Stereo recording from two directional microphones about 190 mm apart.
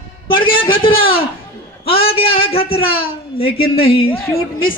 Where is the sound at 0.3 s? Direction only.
25° left (ahead or behind).